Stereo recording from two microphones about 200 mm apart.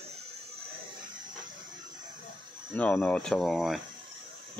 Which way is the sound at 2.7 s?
5° left (ahead or behind).